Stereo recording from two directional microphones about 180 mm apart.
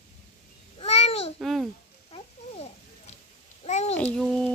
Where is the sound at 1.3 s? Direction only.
Centre (ahead or behind).